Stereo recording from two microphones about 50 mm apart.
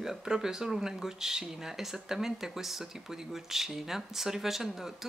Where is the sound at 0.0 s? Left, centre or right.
Centre.